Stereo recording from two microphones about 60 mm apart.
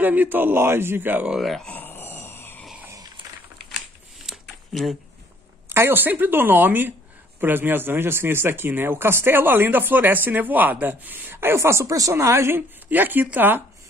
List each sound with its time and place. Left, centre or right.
0.0 s a man's voice: right
1.4 s speech: centre
1.7 s a sound: left
4.3 s a sound: centre
5.7 s a man's voice: right
11.8 s speech: right
12.1 s a woman's voice: right
12.8 s a man's voice: right